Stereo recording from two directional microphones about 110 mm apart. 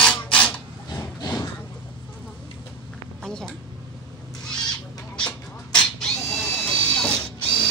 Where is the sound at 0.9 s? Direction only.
35° left (ahead or behind).